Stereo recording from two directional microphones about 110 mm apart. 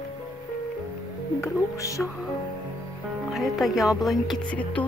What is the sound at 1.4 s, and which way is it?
Speech, 30° left (ahead or behind).